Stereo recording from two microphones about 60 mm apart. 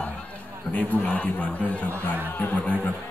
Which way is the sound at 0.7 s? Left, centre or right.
Left.